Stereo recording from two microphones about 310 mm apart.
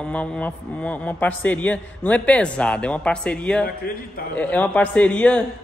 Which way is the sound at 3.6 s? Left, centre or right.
Left.